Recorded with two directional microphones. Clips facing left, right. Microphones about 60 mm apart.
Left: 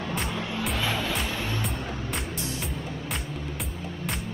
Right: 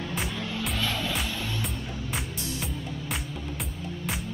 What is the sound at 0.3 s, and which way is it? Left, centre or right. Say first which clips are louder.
Music: left 2 dB; centre.